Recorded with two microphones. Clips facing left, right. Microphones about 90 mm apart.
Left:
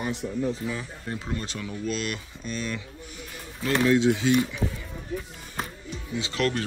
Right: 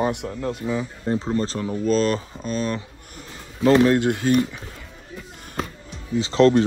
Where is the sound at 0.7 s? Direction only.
25° right (ahead or behind); by 4.4 s 55° right (ahead or behind).